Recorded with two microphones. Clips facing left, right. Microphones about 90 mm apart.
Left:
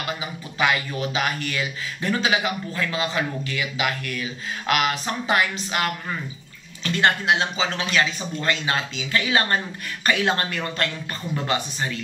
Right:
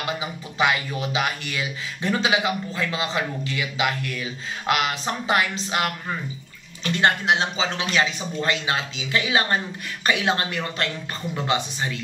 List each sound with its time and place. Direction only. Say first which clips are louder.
0.2 s speech: even; 20° right (ahead or behind)